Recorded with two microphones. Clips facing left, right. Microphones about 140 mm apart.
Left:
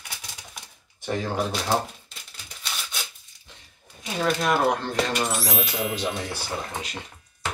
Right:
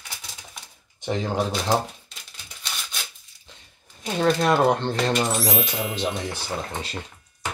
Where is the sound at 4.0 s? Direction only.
30° right (ahead or behind).